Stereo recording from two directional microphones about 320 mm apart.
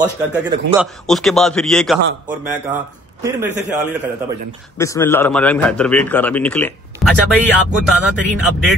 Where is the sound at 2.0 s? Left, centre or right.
Right.